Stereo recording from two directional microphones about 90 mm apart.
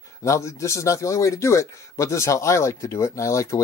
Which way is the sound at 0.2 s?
35° left (ahead or behind).